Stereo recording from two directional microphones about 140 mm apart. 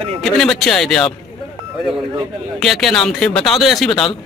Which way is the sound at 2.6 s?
Centre (ahead or behind).